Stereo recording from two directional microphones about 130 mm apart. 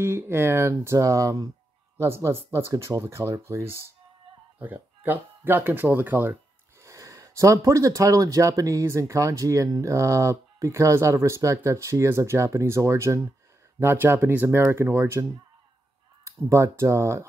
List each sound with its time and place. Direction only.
0.0 s speech: 20° right (ahead or behind)
16.3 s speech: 25° right (ahead or behind)